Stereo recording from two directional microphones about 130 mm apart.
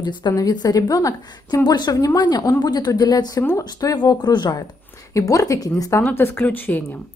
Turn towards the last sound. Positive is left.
turn(degrees=15)  # may be behind; listen again after turning